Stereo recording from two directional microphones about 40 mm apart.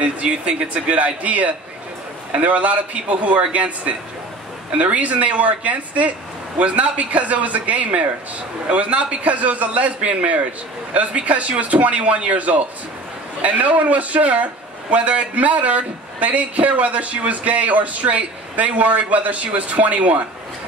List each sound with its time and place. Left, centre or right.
0.0 s a man's voice: right
8.6 s a man's voice: right
9.2 s a man's voice: right